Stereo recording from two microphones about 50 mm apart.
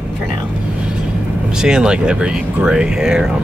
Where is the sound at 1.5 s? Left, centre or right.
Centre.